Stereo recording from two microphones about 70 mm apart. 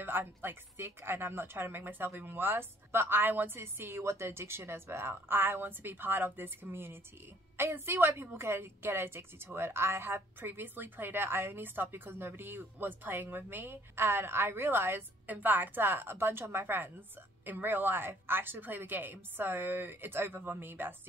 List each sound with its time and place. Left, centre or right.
0.0 s a woman's voice: right